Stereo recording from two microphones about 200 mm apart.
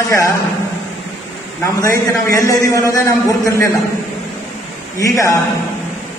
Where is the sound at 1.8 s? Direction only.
15° left (ahead or behind).